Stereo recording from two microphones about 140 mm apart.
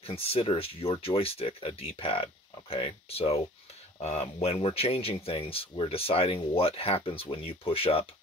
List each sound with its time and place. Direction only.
0.0 s speech: 45° left (ahead or behind)